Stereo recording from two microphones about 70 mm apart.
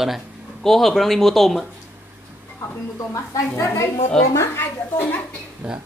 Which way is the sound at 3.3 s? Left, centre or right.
Left.